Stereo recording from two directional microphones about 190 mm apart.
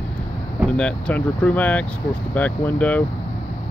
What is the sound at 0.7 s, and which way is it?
Speech, 5° left (ahead or behind).